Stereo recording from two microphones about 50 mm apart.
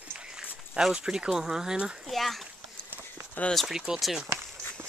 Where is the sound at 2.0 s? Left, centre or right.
Centre.